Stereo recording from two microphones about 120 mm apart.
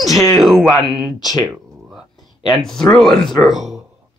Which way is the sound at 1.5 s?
5° right (ahead or behind).